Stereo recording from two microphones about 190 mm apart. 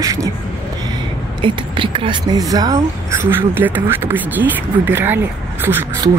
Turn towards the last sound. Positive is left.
turn(degrees=-10)  # may be behind; listen again after turning